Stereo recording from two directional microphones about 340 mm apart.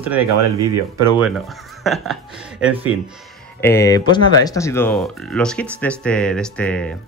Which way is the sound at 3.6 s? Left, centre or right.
Centre.